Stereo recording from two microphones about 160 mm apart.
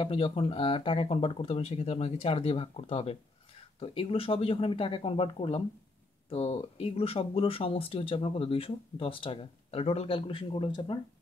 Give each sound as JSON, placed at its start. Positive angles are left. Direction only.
{"t": 0.0, "sound": "speech", "side_deg": 35}